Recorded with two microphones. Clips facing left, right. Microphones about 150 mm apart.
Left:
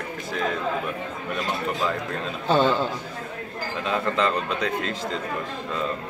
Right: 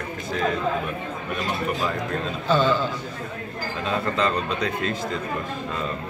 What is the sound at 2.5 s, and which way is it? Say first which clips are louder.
Speech: left 1 dB; 60° left (ahead or behind).